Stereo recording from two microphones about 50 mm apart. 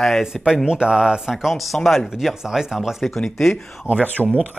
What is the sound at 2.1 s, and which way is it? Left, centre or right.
Speech, centre.